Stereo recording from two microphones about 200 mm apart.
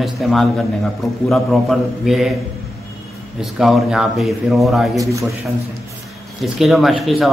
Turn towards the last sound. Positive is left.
turn(degrees=0)  # may be behind; listen again after turning